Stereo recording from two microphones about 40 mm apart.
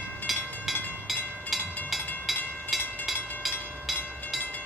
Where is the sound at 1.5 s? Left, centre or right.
Centre.